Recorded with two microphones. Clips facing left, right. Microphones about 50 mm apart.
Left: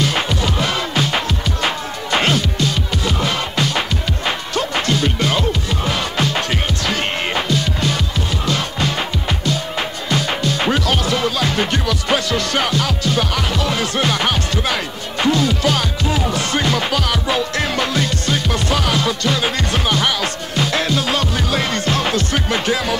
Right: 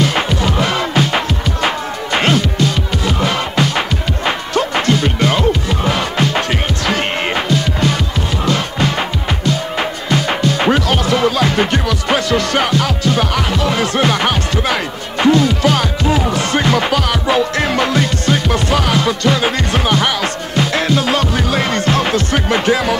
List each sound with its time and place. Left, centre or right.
0.0 s music: right